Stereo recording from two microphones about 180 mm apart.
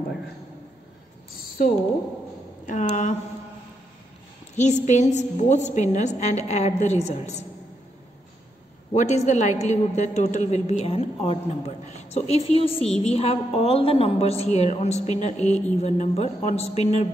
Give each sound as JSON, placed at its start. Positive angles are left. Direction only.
{"t": 2.6, "sound": "speech", "side_deg": 40}
{"t": 4.6, "sound": "a woman's voice", "side_deg": 40}
{"t": 8.9, "sound": "a woman's voice", "side_deg": 40}